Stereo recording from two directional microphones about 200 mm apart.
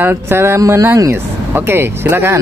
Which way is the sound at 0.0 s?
10° right (ahead or behind).